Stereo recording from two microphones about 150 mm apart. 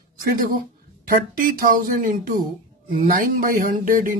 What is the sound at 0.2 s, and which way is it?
A woman's voice, 75° right (ahead or behind).